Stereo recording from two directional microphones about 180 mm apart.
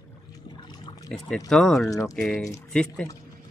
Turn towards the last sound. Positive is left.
turn(degrees=5)  # may be behind; listen again after turning